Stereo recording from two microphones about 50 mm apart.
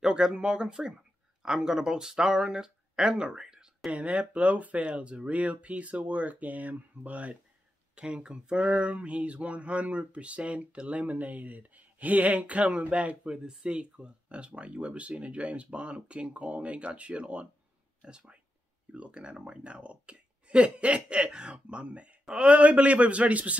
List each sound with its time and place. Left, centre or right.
0.0 s speech: centre
3.9 s speech: right